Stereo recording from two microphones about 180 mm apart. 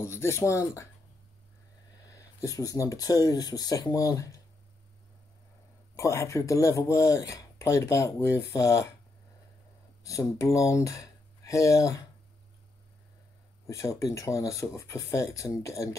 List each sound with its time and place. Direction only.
0.0 s speech: 15° left (ahead or behind)
2.0 s speech: 20° left (ahead or behind)
5.9 s speech: 15° left (ahead or behind)
10.0 s speech: 20° left (ahead or behind)
13.7 s speech: 15° left (ahead or behind)